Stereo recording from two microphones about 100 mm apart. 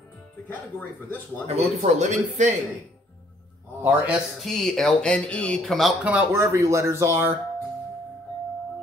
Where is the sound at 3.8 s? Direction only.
15° right (ahead or behind).